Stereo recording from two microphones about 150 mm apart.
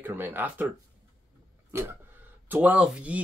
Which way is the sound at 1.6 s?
15° right (ahead or behind).